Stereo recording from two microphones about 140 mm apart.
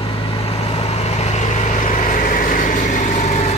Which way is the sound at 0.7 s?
45° left (ahead or behind).